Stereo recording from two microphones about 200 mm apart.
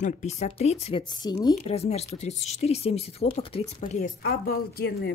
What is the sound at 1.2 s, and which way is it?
Speech, 20° left (ahead or behind).